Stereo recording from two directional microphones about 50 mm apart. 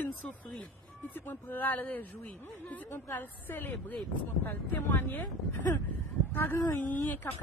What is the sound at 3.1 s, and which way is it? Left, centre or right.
Speech, left.